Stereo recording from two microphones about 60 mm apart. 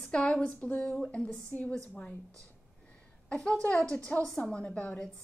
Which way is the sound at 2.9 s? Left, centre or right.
Left.